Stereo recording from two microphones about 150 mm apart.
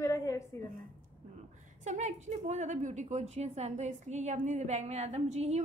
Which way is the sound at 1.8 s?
50° right (ahead or behind).